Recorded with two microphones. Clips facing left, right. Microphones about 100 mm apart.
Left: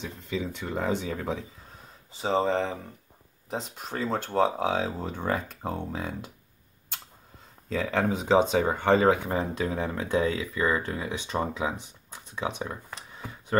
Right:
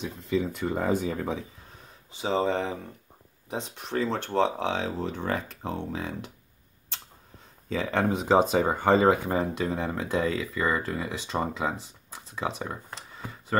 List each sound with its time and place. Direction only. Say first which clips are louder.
0.0 s speech: right 4 dB; centre (ahead or behind)
7.7 s speech: even; centre (ahead or behind)